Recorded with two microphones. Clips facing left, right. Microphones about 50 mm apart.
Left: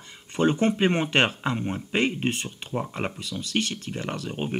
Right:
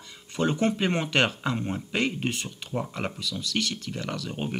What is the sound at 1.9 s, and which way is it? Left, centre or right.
Speech, left.